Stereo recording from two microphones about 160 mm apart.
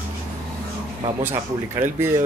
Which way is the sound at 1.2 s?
20° right (ahead or behind).